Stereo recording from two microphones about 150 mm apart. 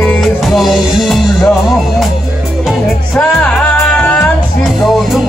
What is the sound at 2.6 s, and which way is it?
Music, 5° left (ahead or behind).